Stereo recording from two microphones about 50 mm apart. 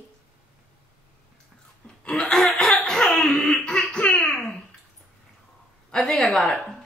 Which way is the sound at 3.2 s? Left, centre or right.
Centre.